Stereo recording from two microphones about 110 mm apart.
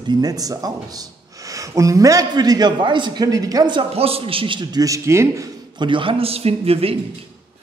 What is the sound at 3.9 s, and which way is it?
Speech, 60° right (ahead or behind).